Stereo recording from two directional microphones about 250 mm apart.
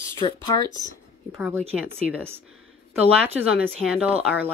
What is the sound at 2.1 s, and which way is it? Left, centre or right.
Speech, centre.